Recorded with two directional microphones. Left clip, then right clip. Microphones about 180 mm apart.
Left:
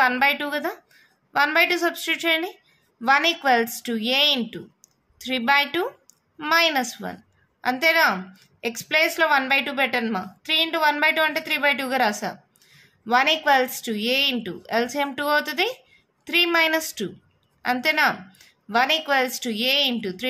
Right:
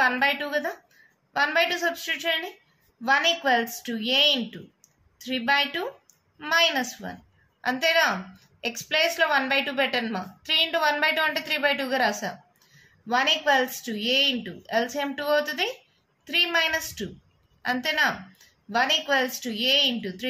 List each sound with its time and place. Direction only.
0.0 s a woman's voice: 40° left (ahead or behind)